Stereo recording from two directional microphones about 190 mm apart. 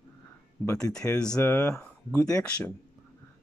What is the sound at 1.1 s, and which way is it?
Speech, 5° left (ahead or behind).